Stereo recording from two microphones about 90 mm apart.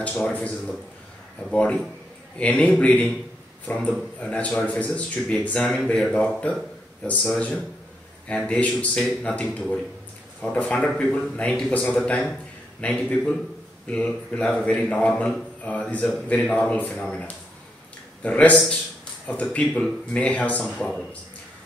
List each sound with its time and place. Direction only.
0.3 s a man's voice: 15° left (ahead or behind)